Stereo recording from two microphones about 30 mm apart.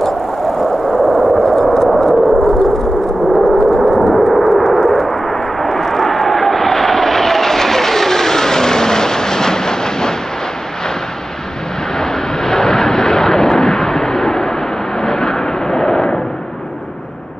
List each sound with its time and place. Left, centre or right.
1.1 s a sound: centre
4.8 s vehicle: centre
12.0 s vehicle: left